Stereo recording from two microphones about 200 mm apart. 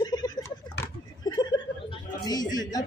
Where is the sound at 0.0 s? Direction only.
20° left (ahead or behind).